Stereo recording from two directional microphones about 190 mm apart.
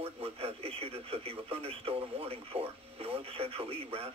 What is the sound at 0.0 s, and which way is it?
Speech, 30° right (ahead or behind).